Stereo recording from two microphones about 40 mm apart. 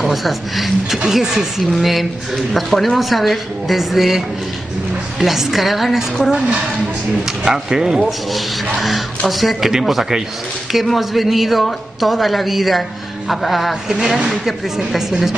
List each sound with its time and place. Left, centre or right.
0.0 s speech: centre
1.1 s speech: centre
1.6 s speech: centre
5.2 s speech: centre
7.4 s speech: centre
8.0 s speech: centre